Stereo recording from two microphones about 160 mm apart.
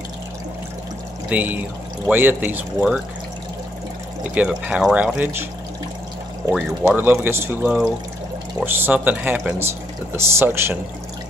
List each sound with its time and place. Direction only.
1.3 s speech: 10° right (ahead or behind)
4.2 s speech: 5° right (ahead or behind)
6.5 s speech: 10° right (ahead or behind)